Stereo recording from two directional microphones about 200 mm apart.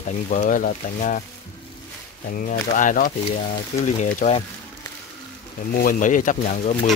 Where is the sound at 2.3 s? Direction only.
45° left (ahead or behind).